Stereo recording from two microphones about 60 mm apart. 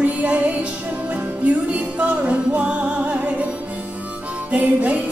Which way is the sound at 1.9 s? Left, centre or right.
Right.